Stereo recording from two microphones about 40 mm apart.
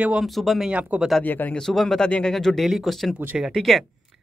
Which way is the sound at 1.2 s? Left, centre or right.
Left.